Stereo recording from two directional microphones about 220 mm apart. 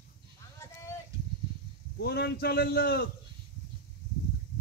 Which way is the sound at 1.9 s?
50° left (ahead or behind).